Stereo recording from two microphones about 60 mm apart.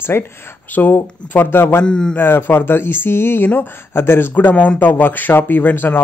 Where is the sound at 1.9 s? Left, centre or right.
Centre.